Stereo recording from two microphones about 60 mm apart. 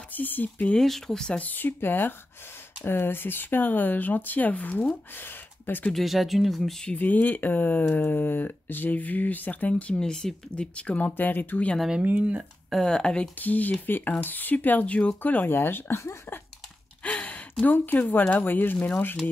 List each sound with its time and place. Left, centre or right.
0.1 s speech: left
0.7 s speech: centre
1.4 s speech: left
5.9 s speech: centre
7.0 s speech: left
12.0 s speech: right
12.7 s speech: centre
13.4 s speech: left
15.5 s speech: left
17.0 s a sound: left
17.7 s speech: left